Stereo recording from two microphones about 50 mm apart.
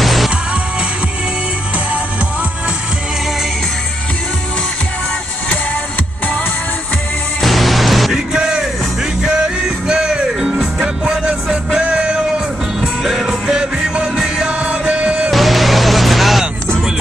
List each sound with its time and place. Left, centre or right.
0.0 s music: centre
7.4 s music: centre
8.3 s music: centre
9.8 s music: centre
12.8 s music: centre
13.5 s music: centre
14.6 s music: right
15.3 s music: centre